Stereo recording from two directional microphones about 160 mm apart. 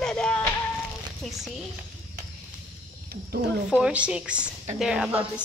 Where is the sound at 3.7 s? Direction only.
5° right (ahead or behind).